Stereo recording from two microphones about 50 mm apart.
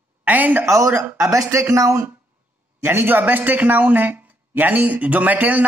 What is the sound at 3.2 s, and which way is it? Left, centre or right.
Speech, right.